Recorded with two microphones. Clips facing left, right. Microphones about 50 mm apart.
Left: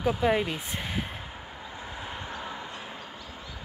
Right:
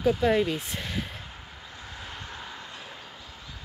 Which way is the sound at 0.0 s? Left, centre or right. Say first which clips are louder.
Right 2 dB; centre.